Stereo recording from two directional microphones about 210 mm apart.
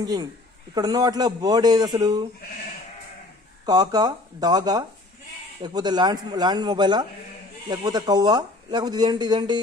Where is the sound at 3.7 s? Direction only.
20° right (ahead or behind).